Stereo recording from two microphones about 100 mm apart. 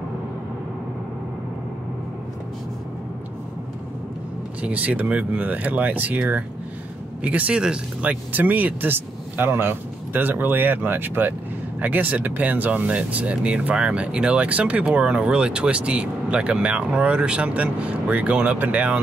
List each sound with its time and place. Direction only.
4.6 s speech: 15° right (ahead or behind)